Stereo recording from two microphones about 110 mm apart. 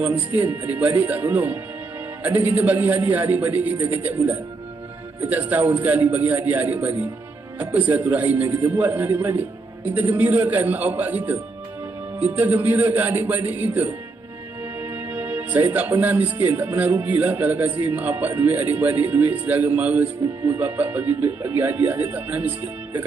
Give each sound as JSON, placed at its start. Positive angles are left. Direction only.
{"t": 0.0, "sound": "speech", "side_deg": -15}